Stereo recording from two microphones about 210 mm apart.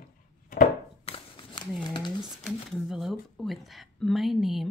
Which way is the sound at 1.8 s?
20° left (ahead or behind).